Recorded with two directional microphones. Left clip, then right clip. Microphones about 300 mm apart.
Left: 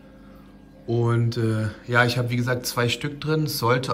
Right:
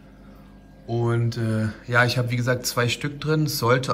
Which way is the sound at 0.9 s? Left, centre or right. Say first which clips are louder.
Left 1 dB; centre.